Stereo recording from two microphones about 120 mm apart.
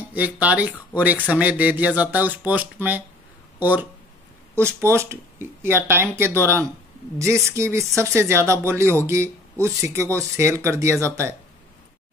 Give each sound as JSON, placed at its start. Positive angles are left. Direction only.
{"t": 0.1, "sound": "speech", "side_deg": -15}